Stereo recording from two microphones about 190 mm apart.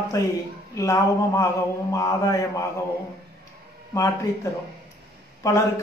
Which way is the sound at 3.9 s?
15° left (ahead or behind).